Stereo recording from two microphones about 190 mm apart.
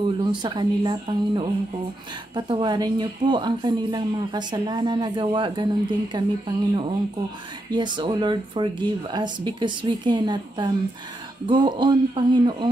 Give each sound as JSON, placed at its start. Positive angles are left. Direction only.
{"t": 0.2, "sound": "a woman's voice", "side_deg": -25}
{"t": 7.7, "sound": "a woman's voice", "side_deg": -25}